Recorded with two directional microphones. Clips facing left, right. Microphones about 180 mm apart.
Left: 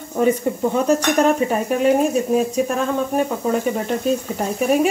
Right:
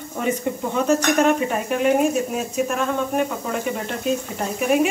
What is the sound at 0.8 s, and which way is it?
Speech, 35° left (ahead or behind).